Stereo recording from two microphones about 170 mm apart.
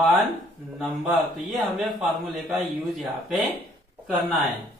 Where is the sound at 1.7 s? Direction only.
Centre (ahead or behind).